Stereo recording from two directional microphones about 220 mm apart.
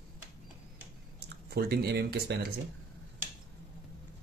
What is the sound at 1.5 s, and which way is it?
Speech, 45° right (ahead or behind).